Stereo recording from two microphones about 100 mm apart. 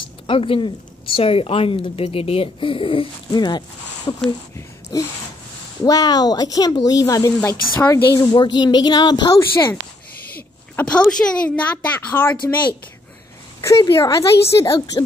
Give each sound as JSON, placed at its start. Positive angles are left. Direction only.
{"t": 0.3, "sound": "a woman's voice", "side_deg": 60}
{"t": 3.3, "sound": "speech", "side_deg": 45}
{"t": 8.3, "sound": "speech", "side_deg": 50}
{"t": 10.9, "sound": "a woman's voice", "side_deg": 10}
{"t": 13.6, "sound": "speech", "side_deg": 30}